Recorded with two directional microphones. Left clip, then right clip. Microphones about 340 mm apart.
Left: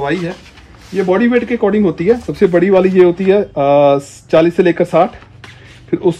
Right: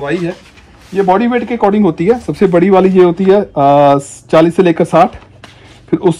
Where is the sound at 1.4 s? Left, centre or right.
Centre.